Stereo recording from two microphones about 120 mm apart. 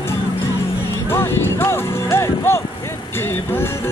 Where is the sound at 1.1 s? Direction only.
20° left (ahead or behind).